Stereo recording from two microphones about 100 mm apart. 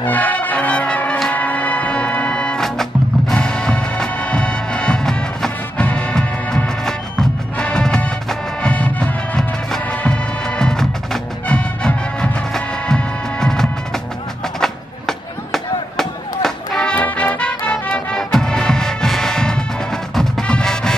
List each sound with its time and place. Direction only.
0.0 s brass instrument: 15° left (ahead or behind)
1.3 s music: 15° left (ahead or behind)
14.6 s chop: 5° left (ahead or behind)